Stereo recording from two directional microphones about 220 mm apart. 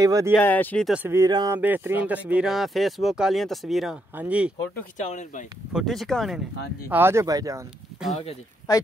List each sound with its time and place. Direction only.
0.0 s speech: 15° right (ahead or behind)
0.4 s speech: 10° left (ahead or behind)
4.9 s speech: 35° left (ahead or behind)
5.7 s speech: centre (ahead or behind)
6.9 s speech: 10° right (ahead or behind)
8.2 s speech: 20° left (ahead or behind)